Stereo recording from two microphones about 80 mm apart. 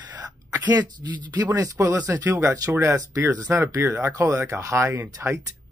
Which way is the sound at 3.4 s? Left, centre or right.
Right.